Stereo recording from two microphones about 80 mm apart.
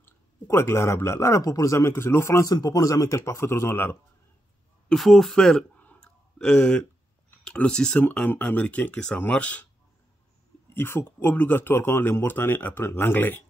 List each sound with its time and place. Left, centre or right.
0.0 s a man's voice: left
2.5 s a man's voice: left
4.9 s speech: centre
5.9 s clicking: centre
7.5 s speech: centre
10.7 s speech: left